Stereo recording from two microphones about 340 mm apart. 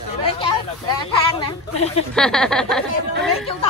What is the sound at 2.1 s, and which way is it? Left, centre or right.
Speech, centre.